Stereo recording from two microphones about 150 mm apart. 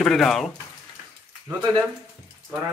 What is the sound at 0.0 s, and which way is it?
Speech, centre (ahead or behind).